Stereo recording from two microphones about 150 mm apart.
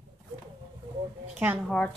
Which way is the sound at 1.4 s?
15° right (ahead or behind).